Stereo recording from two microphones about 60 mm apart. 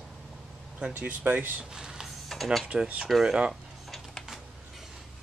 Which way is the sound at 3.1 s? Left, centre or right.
Centre.